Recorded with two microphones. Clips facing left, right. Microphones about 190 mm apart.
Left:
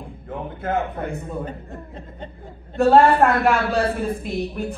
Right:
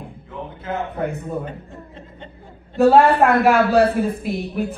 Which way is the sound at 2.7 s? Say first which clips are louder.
Right 1 dB; centre (ahead or behind).